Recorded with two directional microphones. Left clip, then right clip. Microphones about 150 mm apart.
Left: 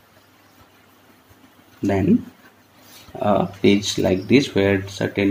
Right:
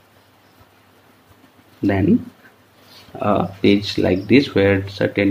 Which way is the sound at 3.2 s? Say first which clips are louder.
Even; 30° left (ahead or behind).